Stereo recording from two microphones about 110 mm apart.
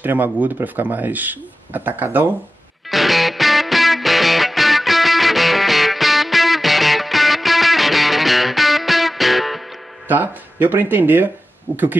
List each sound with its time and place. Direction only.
0.0 s speech: 15° right (ahead or behind)
2.9 s music: centre (ahead or behind)
10.0 s speech: 15° right (ahead or behind)